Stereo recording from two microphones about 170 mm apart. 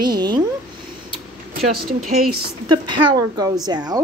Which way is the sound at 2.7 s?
25° right (ahead or behind).